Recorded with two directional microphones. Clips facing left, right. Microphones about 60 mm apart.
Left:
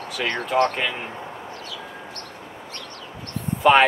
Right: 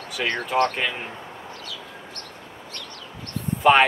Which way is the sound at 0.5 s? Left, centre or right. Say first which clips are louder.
Left 2 dB; centre.